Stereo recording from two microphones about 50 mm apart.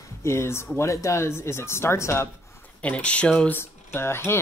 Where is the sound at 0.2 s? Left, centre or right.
Left.